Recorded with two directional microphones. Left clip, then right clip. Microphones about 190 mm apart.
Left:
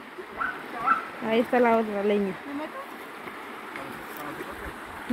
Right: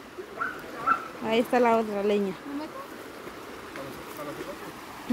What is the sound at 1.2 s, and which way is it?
Speech, 15° right (ahead or behind).